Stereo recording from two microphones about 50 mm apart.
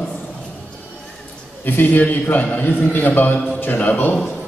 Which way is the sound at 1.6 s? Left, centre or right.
Left.